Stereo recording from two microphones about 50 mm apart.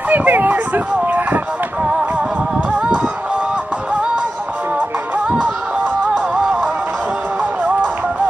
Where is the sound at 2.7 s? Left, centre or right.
Right.